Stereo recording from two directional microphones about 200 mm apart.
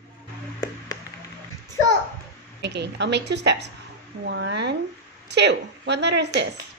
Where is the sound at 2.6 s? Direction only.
60° right (ahead or behind).